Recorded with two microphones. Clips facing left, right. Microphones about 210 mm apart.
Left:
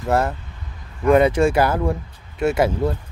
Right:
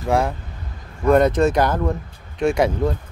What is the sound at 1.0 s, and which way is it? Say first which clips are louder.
Speech: even; 10° left (ahead or behind).